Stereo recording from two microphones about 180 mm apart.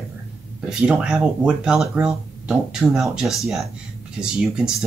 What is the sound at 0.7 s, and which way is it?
Speech, 5° right (ahead or behind).